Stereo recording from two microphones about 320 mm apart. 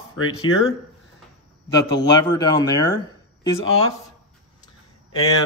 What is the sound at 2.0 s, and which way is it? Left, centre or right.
Speech, centre.